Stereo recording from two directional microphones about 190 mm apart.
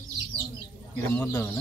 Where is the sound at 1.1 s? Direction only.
10° left (ahead or behind).